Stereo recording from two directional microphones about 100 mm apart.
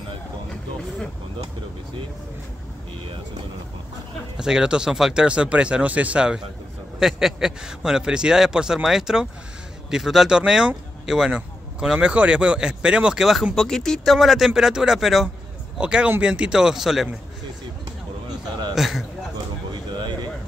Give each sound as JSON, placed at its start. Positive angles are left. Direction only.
{"t": 4.4, "sound": "a man's voice", "side_deg": -5}
{"t": 18.8, "sound": "a man's voice", "side_deg": 0}
{"t": 19.7, "sound": "a sound", "side_deg": -50}